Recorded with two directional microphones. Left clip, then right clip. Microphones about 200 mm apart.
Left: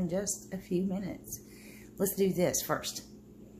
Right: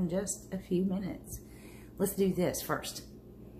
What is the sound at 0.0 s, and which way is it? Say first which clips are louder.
A woman's voice: left 1 dB; 5° left (ahead or behind).